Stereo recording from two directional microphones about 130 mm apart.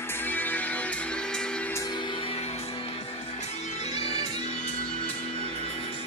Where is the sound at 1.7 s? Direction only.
30° left (ahead or behind); by 2.6 s 50° left (ahead or behind).